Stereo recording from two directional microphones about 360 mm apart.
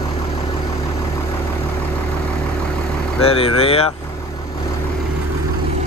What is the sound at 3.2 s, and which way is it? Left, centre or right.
Speech, centre.